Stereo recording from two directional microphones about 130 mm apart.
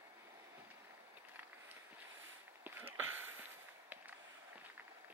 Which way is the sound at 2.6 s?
15° right (ahead or behind).